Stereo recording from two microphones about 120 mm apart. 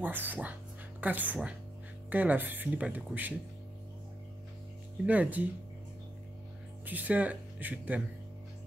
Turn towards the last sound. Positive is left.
turn(degrees=-10)  # may be behind; listen again after turning